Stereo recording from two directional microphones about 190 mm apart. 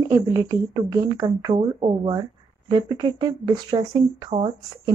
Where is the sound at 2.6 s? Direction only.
25° right (ahead or behind).